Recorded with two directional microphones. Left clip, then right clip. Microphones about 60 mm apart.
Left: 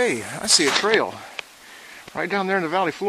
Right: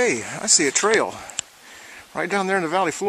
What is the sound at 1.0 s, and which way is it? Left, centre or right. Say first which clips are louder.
Speech: right 1 dB; right.